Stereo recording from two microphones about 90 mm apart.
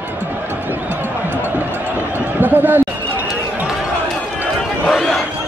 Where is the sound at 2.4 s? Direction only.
20° right (ahead or behind).